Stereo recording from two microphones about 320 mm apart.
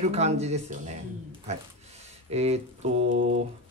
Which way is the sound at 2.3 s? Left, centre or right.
Centre.